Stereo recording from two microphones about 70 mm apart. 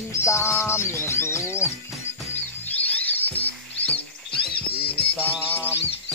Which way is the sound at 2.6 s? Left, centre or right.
Left.